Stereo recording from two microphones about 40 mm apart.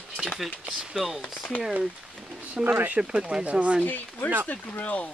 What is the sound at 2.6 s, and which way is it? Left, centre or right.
Speech, right.